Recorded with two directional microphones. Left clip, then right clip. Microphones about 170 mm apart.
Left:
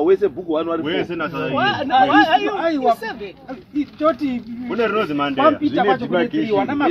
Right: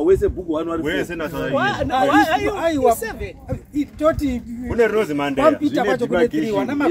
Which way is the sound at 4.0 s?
55° right (ahead or behind).